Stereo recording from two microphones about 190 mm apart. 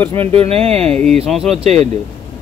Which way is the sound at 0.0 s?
10° left (ahead or behind).